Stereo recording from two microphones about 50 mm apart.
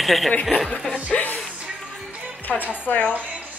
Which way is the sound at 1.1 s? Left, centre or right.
Left.